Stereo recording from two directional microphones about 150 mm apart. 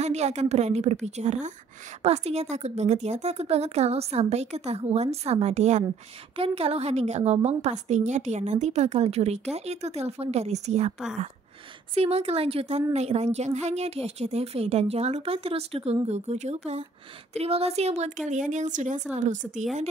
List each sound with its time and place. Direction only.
0.0 s a woman's voice: 45° right (ahead or behind)
11.9 s a woman's voice: 45° right (ahead or behind)